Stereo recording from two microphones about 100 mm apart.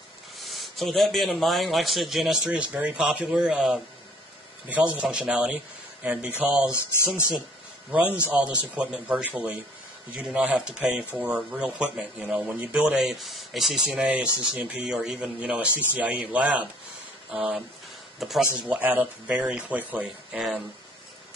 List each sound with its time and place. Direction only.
0.4 s a man's voice: centre (ahead or behind)
2.5 s speech: 10° right (ahead or behind)
7.9 s speech: 15° right (ahead or behind)
13.9 s speech: 10° right (ahead or behind)
18.2 s speech: centre (ahead or behind)
18.6 s speech: 15° right (ahead or behind)